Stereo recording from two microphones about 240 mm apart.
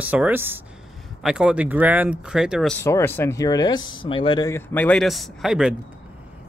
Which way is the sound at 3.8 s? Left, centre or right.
Left.